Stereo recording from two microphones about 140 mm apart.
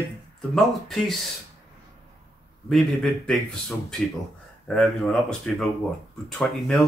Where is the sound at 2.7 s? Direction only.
Centre (ahead or behind).